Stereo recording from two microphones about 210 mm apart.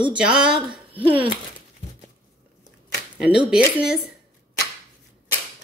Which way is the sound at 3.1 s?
5° right (ahead or behind).